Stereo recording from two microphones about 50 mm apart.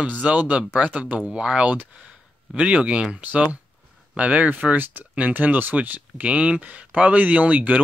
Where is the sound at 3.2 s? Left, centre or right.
Right.